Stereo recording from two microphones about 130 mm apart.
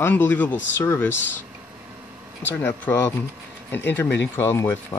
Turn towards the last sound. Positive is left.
turn(degrees=20)  # may be behind; listen again after turning